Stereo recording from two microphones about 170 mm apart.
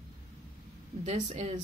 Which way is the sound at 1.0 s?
40° right (ahead or behind).